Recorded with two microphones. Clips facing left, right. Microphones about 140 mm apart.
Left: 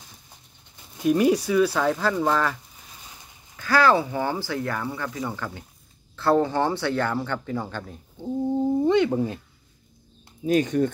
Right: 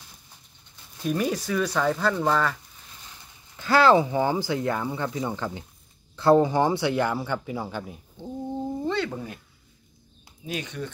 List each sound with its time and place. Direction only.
0.9 s speech: 10° left (ahead or behind)
3.5 s speech: 20° right (ahead or behind)
8.8 s speech: 20° left (ahead or behind)
10.4 s speech: 45° left (ahead or behind)